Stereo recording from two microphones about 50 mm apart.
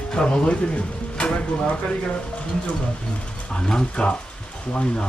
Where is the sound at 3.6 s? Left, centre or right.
Centre.